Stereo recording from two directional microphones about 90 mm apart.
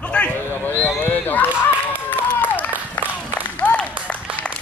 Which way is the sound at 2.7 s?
20° right (ahead or behind).